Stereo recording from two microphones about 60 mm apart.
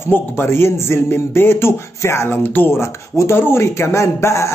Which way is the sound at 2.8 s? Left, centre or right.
Left.